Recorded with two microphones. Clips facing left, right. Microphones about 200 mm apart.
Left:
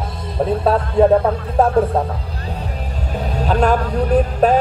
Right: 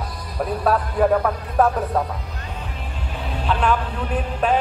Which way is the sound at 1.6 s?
25° left (ahead or behind).